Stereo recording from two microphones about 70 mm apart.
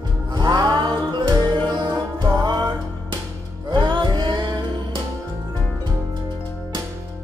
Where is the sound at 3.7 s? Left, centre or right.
Right.